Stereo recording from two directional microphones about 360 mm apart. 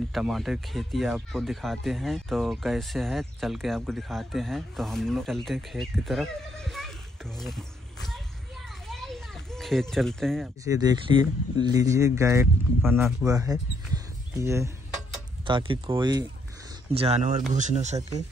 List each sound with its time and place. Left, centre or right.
0.1 s speech: centre
8.8 s a child's voice: centre